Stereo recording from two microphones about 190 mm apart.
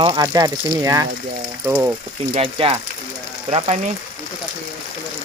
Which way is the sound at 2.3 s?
30° right (ahead or behind).